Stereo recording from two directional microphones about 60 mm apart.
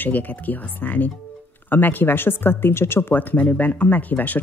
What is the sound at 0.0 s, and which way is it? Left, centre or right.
Speech, left.